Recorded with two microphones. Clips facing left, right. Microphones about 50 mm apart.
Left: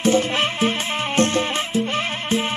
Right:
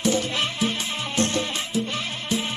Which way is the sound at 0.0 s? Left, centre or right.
Left.